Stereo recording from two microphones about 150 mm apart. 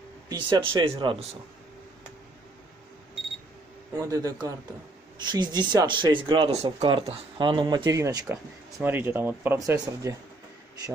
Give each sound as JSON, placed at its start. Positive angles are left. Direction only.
{"t": 0.3, "sound": "speech", "side_deg": -30}
{"t": 3.9, "sound": "speech", "side_deg": -25}